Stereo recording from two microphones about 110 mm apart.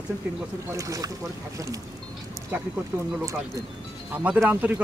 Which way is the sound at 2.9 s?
30° right (ahead or behind).